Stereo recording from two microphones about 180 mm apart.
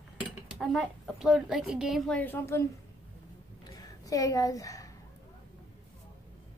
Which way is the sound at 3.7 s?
20° left (ahead or behind).